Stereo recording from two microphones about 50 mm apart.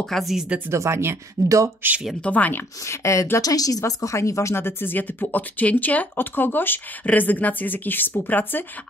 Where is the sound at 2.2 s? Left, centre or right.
Left.